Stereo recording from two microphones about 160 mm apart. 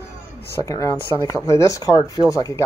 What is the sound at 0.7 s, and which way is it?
Speech, 20° left (ahead or behind).